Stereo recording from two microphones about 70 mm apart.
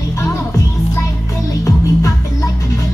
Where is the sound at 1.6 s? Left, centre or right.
Left.